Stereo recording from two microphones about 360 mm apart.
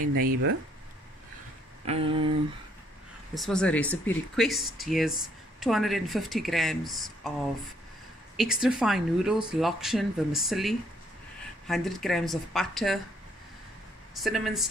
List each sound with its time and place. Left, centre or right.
0.2 s speech: right
1.9 s a sound: centre
3.3 s speech: centre
8.4 s speech: centre
14.1 s speech: centre